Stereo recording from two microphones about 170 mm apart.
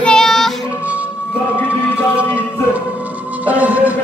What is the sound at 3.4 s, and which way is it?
Speech, 10° right (ahead or behind).